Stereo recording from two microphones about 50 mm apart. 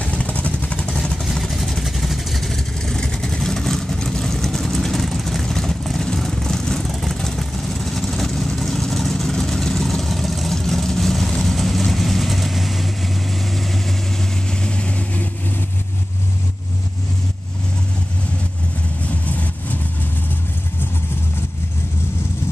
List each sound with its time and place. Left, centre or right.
0.0 s vehicle: left
0.9 s vehicle: centre
1.2 s vehicle: centre
14.6 s vehicle: left
19.2 s vehicle: left